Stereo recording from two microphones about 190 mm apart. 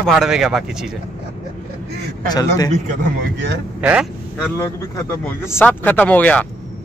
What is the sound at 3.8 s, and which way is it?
Speech, 5° right (ahead or behind).